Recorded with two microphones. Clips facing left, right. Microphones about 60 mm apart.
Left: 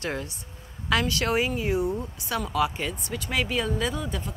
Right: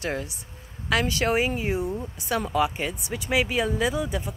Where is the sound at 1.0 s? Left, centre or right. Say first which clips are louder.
Right 2 dB; right.